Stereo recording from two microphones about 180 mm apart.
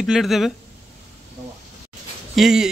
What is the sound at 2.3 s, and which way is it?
Speech, 5° right (ahead or behind).